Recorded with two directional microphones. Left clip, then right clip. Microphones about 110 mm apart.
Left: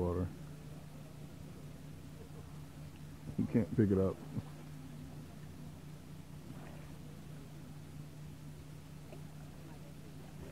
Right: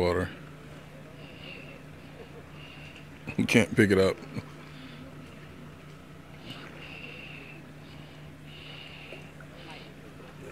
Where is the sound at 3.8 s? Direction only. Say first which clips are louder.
Right 9 dB; 45° right (ahead or behind).